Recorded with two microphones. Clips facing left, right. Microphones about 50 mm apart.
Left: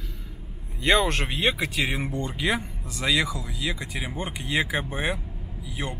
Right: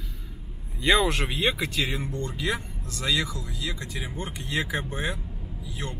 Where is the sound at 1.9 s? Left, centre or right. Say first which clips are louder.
Left 2 dB; left.